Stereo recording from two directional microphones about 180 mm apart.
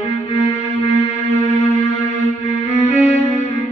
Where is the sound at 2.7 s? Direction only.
40° left (ahead or behind).